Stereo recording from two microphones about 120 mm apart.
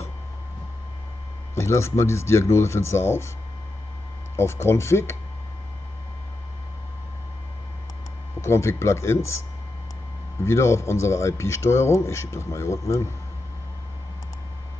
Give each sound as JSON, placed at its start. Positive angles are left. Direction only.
{"t": 1.5, "sound": "speech", "side_deg": 20}
{"t": 4.4, "sound": "speech", "side_deg": 20}
{"t": 8.4, "sound": "speech", "side_deg": 20}
{"t": 10.4, "sound": "speech", "side_deg": 20}